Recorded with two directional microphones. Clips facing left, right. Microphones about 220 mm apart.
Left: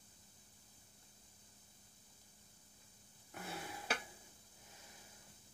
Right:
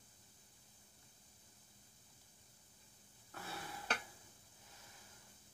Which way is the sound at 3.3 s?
15° left (ahead or behind).